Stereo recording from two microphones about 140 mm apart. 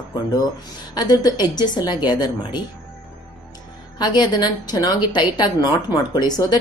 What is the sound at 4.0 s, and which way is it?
A woman's voice, 30° left (ahead or behind).